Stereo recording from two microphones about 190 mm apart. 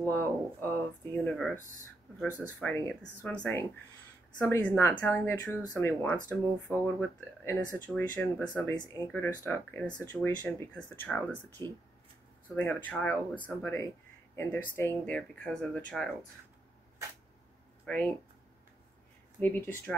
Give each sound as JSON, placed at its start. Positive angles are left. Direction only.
{"t": 0.0, "sound": "speech", "side_deg": 10}
{"t": 2.2, "sound": "speech", "side_deg": -10}
{"t": 2.6, "sound": "speech", "side_deg": 10}
{"t": 4.4, "sound": "speech", "side_deg": 10}
{"t": 17.8, "sound": "speech", "side_deg": 5}
{"t": 19.4, "sound": "speech", "side_deg": 10}